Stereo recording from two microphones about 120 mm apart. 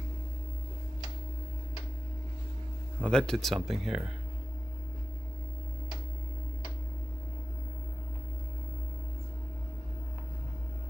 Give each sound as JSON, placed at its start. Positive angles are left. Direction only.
{"t": 3.0, "sound": "speech", "side_deg": 5}